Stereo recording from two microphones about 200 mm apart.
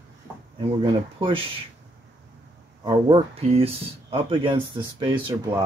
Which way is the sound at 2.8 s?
25° right (ahead or behind).